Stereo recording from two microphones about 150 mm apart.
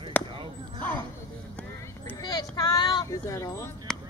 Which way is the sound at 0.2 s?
10° left (ahead or behind).